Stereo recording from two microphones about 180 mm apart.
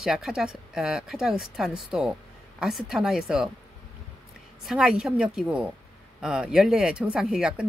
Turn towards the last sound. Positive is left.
turn(degrees=-5)  # may be behind; listen again after turning